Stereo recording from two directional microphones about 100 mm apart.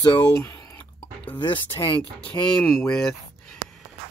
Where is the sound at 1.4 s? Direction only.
55° left (ahead or behind).